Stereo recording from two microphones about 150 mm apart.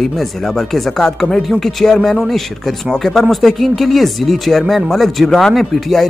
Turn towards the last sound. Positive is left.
turn(degrees=0)  # may be behind; listen again after turning